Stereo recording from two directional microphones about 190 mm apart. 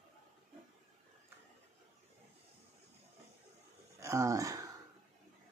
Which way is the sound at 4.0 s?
15° right (ahead or behind).